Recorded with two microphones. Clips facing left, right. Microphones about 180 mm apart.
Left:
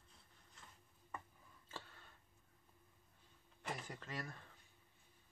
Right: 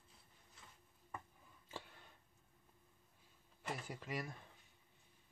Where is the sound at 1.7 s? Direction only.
15° right (ahead or behind).